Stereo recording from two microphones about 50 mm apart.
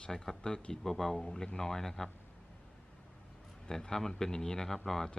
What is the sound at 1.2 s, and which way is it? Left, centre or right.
Speech, centre.